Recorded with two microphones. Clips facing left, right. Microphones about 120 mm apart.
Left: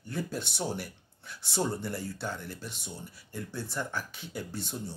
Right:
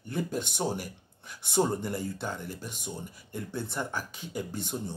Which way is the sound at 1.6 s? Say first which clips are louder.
Right 3 dB; 15° right (ahead or behind).